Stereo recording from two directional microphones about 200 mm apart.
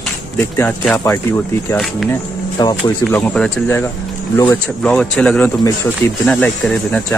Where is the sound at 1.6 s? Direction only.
Centre (ahead or behind).